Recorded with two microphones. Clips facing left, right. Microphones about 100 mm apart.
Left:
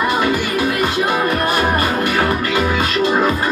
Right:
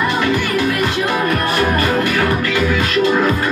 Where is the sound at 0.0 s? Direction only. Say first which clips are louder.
Even; 15° left (ahead or behind).